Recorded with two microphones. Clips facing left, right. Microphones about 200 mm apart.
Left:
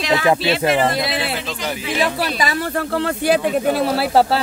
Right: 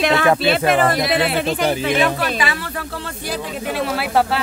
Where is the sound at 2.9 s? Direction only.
70° left (ahead or behind).